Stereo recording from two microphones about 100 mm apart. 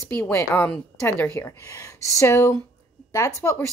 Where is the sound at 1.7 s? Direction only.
35° left (ahead or behind).